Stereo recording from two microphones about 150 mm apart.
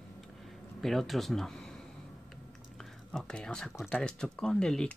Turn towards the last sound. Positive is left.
turn(degrees=5)  # may be behind; listen again after turning